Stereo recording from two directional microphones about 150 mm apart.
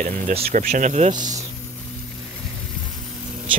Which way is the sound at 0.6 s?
60° right (ahead or behind).